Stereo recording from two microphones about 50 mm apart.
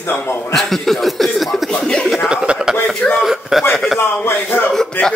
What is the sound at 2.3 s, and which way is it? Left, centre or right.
Chuckle, centre.